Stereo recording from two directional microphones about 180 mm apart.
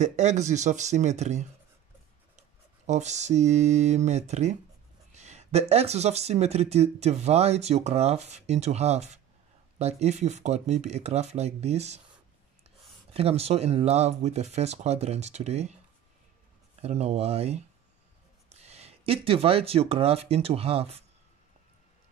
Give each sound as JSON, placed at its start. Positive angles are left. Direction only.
{"t": 0.0, "sound": "speech", "side_deg": -40}
{"t": 2.9, "sound": "speech", "side_deg": -40}
{"t": 13.1, "sound": "speech", "side_deg": -35}
{"t": 16.8, "sound": "speech", "side_deg": -35}